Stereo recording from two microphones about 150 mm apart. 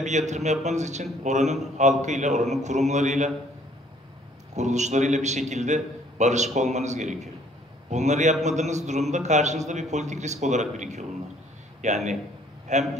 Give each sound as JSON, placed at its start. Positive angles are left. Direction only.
{"t": 0.0, "sound": "a man's voice", "side_deg": -50}
{"t": 4.6, "sound": "a man's voice", "side_deg": -50}